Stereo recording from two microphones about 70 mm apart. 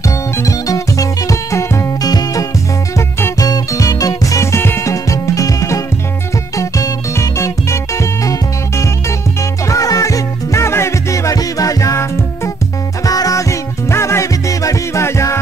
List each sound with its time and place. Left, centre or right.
0.4 s music: left
2.0 s music: left
4.8 s music: left